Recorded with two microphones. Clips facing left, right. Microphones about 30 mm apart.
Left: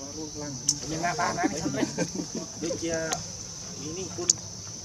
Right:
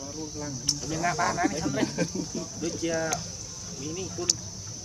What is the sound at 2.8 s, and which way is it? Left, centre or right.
Speech, centre.